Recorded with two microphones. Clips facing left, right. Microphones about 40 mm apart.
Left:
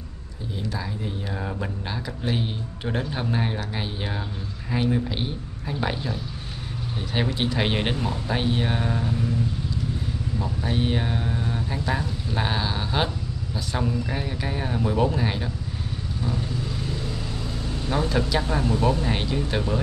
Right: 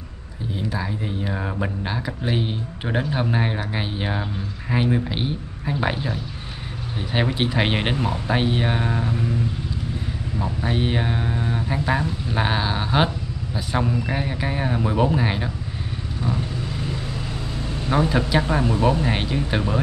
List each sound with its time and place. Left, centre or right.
0.6 s speech: centre
7.2 s speech: centre
10.4 s speech: right
17.8 s speech: centre